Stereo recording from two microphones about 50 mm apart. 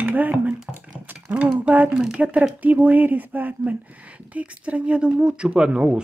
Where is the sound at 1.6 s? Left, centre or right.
Right.